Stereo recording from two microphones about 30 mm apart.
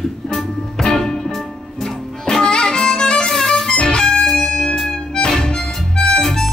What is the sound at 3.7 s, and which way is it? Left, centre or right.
Music, left.